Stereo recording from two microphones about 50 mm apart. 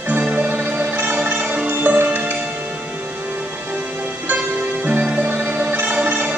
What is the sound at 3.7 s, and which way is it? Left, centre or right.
Music, right.